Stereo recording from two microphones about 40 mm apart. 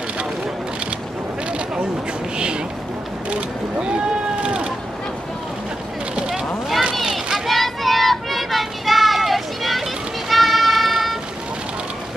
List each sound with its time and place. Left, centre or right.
2.3 s a sound: right
6.1 s vehicle: right
7.3 s child singing: centre
10.3 s music: centre